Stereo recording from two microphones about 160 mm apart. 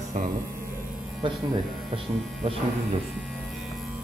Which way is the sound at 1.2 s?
30° right (ahead or behind).